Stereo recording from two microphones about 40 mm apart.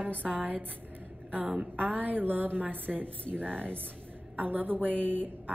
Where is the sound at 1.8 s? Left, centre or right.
Right.